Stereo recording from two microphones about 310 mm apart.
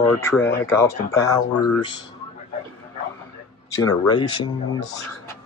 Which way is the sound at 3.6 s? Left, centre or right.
Centre.